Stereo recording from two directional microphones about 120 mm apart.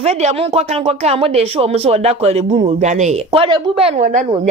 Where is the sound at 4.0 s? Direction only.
90° right.